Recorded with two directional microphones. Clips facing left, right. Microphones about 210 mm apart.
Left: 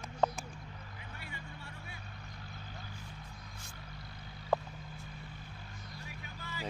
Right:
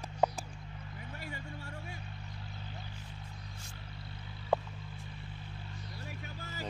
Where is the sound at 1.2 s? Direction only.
40° right (ahead or behind).